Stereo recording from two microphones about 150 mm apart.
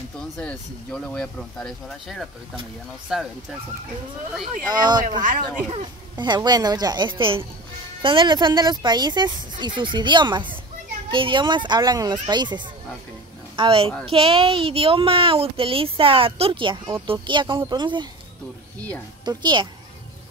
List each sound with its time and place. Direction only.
0.4 s speech: 5° left (ahead or behind)
4.3 s speech: 5° right (ahead or behind)
4.6 s a woman's voice: 30° right (ahead or behind)
6.1 s a woman's voice: 30° right (ahead or behind)
19.2 s a woman's voice: 30° right (ahead or behind)